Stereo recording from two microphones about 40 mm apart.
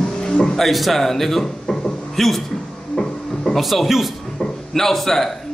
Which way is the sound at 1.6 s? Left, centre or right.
Centre.